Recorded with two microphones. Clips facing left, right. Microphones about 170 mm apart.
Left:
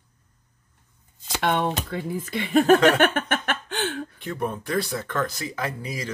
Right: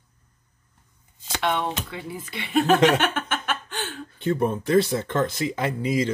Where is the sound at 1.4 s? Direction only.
50° left (ahead or behind).